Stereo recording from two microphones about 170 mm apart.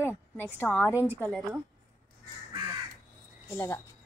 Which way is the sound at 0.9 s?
10° right (ahead or behind).